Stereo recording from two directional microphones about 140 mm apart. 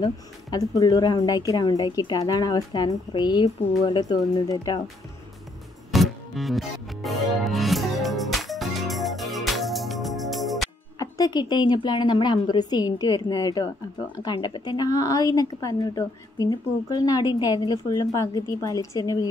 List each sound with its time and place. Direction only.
0.0 s a woman's voice: 25° left (ahead or behind)
5.9 s music: centre (ahead or behind)
11.0 s a woman's voice: 25° left (ahead or behind)